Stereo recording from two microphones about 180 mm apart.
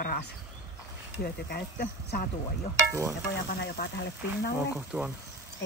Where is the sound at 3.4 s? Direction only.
65° left (ahead or behind).